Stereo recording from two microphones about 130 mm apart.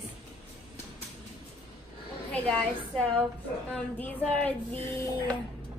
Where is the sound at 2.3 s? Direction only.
5° left (ahead or behind).